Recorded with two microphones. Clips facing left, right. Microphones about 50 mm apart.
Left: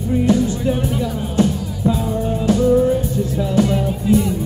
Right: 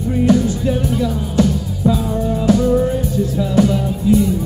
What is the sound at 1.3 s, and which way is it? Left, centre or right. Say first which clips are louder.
Music: left 1 dB; left.